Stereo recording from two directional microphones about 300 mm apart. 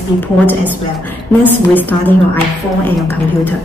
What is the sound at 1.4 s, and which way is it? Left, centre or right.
Speech, centre.